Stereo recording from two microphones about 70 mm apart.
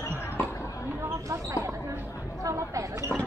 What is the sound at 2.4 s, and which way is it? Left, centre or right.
Chatter, right.